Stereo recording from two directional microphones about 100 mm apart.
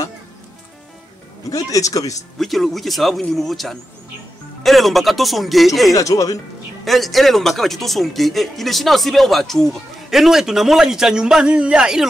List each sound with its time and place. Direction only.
1.5 s speech: 35° left (ahead or behind)
2.3 s speech: centre (ahead or behind)
5.9 s speech: 35° left (ahead or behind)
6.8 s speech: centre (ahead or behind)